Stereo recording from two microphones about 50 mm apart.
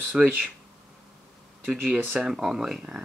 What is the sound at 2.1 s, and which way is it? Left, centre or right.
Speech, centre.